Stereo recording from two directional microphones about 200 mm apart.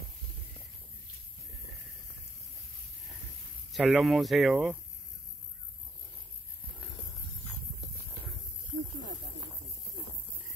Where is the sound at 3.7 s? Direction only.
Centre (ahead or behind).